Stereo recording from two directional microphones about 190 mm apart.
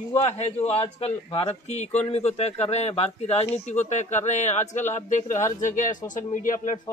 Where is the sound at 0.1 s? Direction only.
30° left (ahead or behind).